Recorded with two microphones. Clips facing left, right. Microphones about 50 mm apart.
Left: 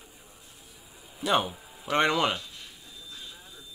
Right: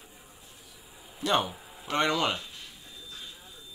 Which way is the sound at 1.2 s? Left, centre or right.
Centre.